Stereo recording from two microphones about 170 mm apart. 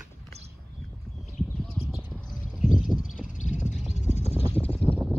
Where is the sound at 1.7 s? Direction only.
15° left (ahead or behind).